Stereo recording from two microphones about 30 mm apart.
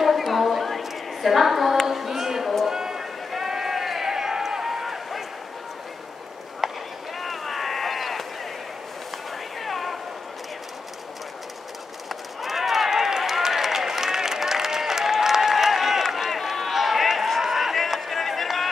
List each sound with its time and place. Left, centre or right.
0.0 s a sound: centre
3.3 s run: centre
6.6 s run: centre
7.2 s boat: centre
9.6 s a sound: centre
12.1 s run: centre
13.4 s a sound: centre
17.4 s run: centre
18.0 s run: centre